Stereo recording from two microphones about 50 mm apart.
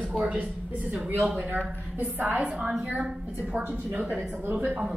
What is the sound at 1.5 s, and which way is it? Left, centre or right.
A woman's voice, right.